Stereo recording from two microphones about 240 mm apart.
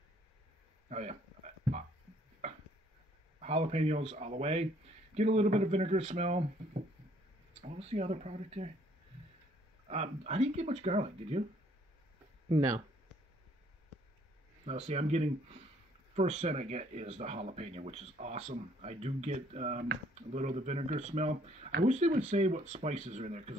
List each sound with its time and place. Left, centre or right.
0.8 s a sound: right
2.4 s chopping: right
3.3 s speech: right
9.8 s speech: right
12.4 s speech: centre
14.7 s speech: right